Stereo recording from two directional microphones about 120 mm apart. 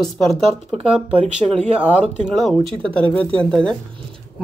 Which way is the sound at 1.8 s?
10° right (ahead or behind).